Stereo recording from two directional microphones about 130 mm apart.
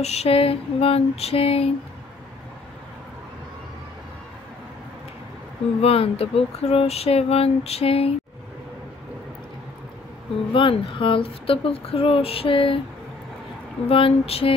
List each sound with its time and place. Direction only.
0.0 s speech: 55° left (ahead or behind)
5.8 s speech: 50° left (ahead or behind)
10.5 s speech: 40° left (ahead or behind)
13.8 s speech: 45° left (ahead or behind)